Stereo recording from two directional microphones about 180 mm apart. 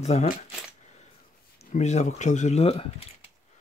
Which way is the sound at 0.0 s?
40° left (ahead or behind).